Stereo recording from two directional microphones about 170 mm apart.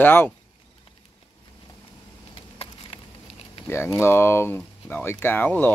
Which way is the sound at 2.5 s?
35° left (ahead or behind).